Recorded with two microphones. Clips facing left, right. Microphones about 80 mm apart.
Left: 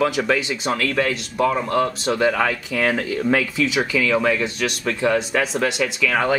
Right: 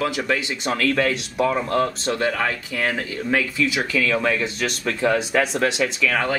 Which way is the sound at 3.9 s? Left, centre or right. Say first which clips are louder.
Left 2 dB; centre.